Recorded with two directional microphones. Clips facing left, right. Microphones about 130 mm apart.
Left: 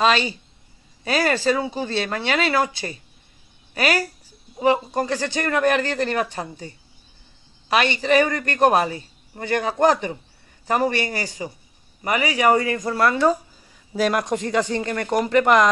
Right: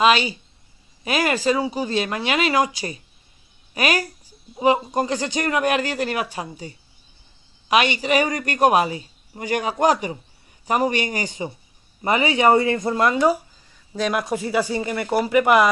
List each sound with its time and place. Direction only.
0.0 s a man's voice: 10° right (ahead or behind)
13.9 s a man's voice: centre (ahead or behind)